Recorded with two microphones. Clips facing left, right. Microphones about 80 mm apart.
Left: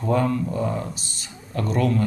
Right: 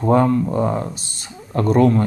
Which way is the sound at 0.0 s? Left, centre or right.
Right.